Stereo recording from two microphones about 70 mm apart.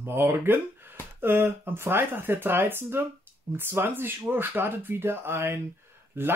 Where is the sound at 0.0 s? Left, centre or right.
Right.